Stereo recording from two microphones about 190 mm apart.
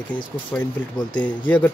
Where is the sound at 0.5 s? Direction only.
10° left (ahead or behind).